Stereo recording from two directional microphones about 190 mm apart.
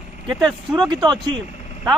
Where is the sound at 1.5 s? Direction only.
35° left (ahead or behind).